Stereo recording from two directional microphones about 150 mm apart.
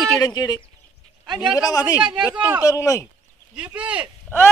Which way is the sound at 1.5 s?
25° left (ahead or behind).